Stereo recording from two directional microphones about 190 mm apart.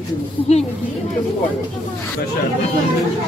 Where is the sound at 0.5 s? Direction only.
35° left (ahead or behind).